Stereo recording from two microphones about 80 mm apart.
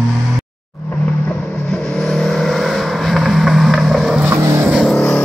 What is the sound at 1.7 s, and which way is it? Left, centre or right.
Vehicle, centre.